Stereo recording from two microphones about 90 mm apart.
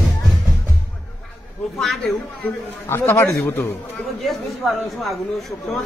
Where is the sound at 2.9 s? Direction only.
30° left (ahead or behind).